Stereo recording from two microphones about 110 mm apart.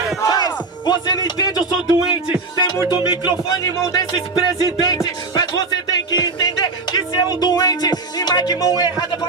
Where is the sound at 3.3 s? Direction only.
40° left (ahead or behind).